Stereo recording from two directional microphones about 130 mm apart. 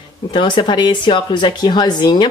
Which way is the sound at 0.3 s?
40° left (ahead or behind).